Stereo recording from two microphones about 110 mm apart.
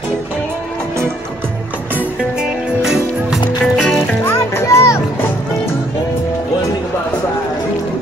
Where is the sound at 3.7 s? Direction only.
5° left (ahead or behind).